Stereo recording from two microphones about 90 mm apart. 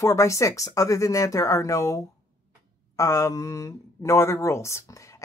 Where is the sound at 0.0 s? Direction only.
35° left (ahead or behind).